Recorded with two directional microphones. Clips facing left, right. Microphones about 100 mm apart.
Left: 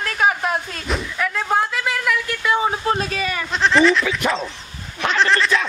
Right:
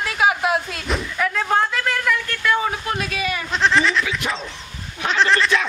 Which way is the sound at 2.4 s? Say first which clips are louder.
Left 1 dB; 20° left (ahead or behind).